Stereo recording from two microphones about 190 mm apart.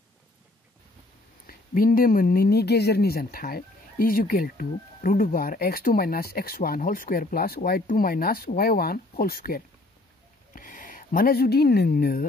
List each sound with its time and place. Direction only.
1.5 s speech: 50° left (ahead or behind)